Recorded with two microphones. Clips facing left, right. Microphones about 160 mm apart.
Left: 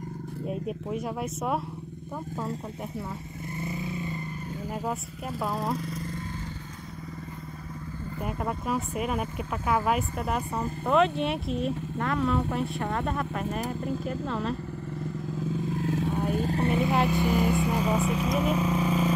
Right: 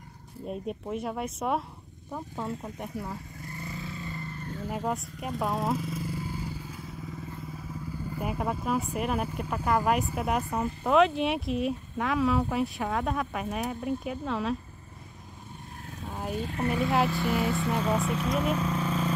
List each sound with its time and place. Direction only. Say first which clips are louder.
0.5 s speech: left 1 dB; centre (ahead or behind)
3.5 s vehicle: left 6 dB; 20° left (ahead or behind)
4.7 s speech: right 2 dB; 5° left (ahead or behind)
8.2 s speech: even; 5° right (ahead or behind)
15.4 s vehicle: left 16 dB; 90° left
16.3 s vehicle: left 5 dB; 45° left (ahead or behind)
16.5 s vehicle: even; 25° left (ahead or behind)
17.1 s speech: left 3 dB; 15° left (ahead or behind)